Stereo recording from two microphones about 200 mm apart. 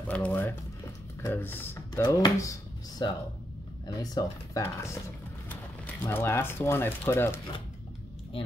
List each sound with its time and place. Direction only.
0.1 s speech: 5° left (ahead or behind)
6.0 s speech: 10° left (ahead or behind)